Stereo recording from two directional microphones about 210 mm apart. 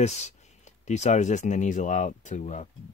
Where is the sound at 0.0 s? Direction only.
30° left (ahead or behind).